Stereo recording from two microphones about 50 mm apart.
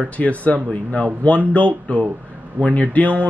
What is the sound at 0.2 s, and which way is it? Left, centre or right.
Speech, left.